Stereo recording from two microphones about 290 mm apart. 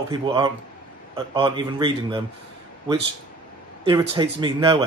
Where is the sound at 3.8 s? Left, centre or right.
Centre.